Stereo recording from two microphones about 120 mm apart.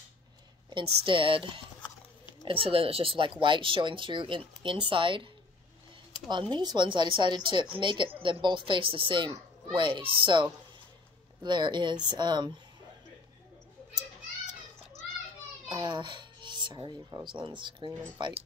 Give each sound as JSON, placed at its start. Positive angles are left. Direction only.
{"t": 0.7, "sound": "speech", "side_deg": -45}
{"t": 15.7, "sound": "speech", "side_deg": -40}